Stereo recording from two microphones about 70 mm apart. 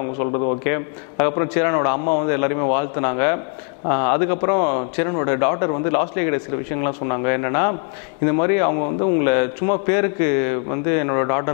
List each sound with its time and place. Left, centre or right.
0.0 s speech: left